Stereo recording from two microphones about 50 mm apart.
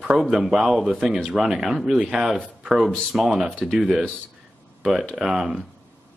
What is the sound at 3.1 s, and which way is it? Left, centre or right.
Speech, centre.